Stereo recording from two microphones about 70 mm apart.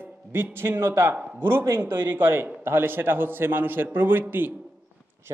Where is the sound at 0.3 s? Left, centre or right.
Right.